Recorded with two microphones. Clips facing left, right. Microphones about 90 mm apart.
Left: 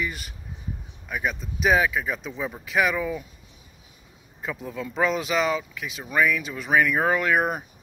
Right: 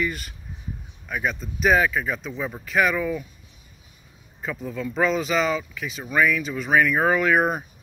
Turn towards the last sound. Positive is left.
turn(degrees=5)  # may be behind; listen again after turning